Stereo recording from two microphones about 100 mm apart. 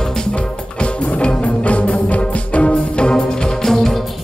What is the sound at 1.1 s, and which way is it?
Music, 10° left (ahead or behind).